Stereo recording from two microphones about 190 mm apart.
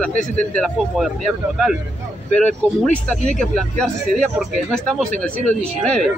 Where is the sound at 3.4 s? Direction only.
5° left (ahead or behind).